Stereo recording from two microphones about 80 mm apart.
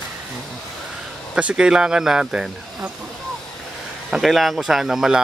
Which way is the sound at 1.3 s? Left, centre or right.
Centre.